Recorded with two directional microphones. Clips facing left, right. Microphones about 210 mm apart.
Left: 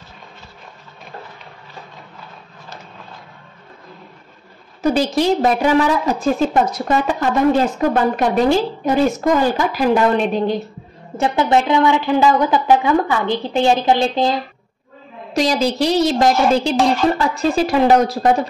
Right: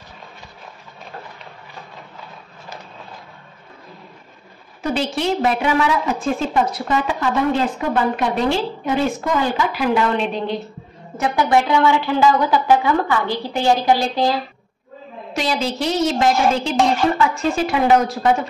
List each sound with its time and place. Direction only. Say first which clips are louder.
4.9 s a woman's voice: left 3 dB; 40° left (ahead or behind)
11.1 s speech: left 1 dB; 25° left (ahead or behind)
15.3 s a woman's voice: left 5 dB; 40° left (ahead or behind)